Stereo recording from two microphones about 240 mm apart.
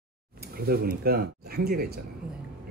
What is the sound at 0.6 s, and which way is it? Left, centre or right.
Speech, right.